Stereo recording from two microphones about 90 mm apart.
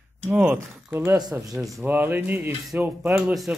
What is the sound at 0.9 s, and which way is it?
Speech, 30° right (ahead or behind).